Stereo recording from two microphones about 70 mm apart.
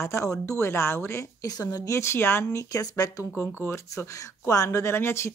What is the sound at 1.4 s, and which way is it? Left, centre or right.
Speech, left.